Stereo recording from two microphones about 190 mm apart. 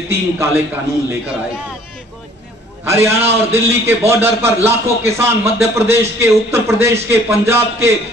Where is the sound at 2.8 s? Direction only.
15° right (ahead or behind).